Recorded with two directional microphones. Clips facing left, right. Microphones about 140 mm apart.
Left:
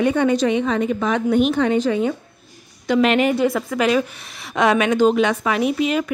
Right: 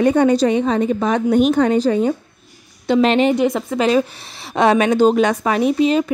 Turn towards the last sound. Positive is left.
turn(degrees=-30)  # may be behind; listen again after turning